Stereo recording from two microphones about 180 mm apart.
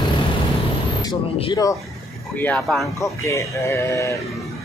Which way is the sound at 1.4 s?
20° left (ahead or behind).